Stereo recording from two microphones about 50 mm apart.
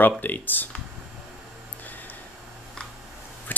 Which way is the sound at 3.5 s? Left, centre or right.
Left.